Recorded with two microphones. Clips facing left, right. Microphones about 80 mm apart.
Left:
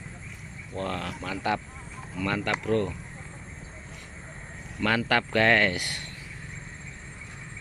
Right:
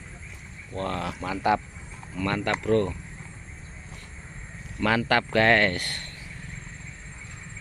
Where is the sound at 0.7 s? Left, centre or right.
Centre.